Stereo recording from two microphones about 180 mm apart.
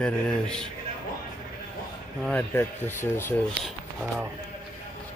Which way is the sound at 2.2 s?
10° left (ahead or behind).